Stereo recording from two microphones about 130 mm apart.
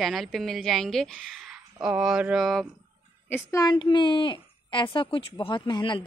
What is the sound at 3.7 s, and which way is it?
Speech, 35° left (ahead or behind).